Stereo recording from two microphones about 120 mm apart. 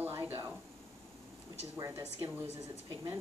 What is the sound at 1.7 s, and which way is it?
Speech, 20° right (ahead or behind).